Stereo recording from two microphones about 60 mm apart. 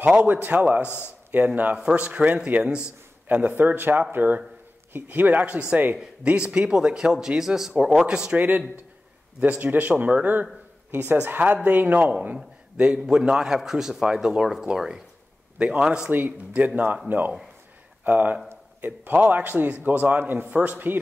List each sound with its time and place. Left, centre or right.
0.0 s a man's voice: right
0.8 s speech: left
1.3 s a man's voice: right
3.4 s a man's voice: right
6.2 s speech: centre
8.4 s a man's voice: right
16.1 s a man's voice: right
18.0 s a man's voice: right